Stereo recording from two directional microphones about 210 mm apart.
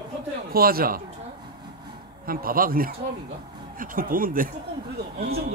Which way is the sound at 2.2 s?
45° right (ahead or behind).